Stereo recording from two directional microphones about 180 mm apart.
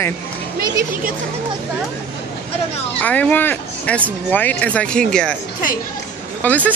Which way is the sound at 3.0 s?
10° left (ahead or behind).